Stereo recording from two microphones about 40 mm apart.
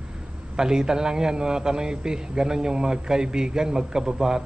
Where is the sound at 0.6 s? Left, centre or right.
Centre.